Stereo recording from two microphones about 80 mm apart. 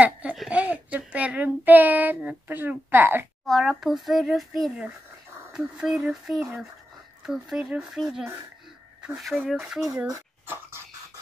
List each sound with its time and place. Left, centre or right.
0.0 s a sound: centre
0.5 s child singing: centre
3.4 s a child's voice: centre
10.4 s dog: right